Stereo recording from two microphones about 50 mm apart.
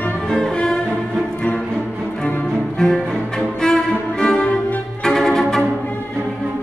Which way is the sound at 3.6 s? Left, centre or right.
Centre.